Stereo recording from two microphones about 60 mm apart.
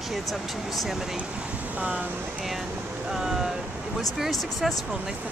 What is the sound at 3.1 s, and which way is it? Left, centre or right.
Speech, centre.